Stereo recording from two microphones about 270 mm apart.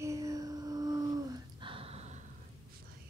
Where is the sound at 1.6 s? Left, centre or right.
Centre.